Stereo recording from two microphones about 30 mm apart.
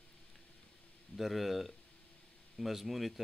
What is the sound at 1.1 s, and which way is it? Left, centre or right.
Speech, centre.